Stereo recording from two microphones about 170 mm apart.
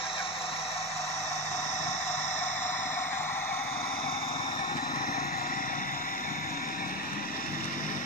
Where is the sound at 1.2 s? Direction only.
40° left (ahead or behind).